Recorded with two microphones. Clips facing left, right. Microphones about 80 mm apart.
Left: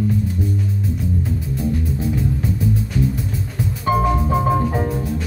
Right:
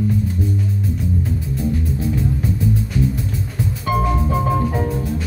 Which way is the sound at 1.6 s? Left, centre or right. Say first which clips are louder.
Even; centre.